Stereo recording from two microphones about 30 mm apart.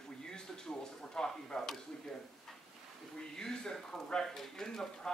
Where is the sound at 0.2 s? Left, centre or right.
Left.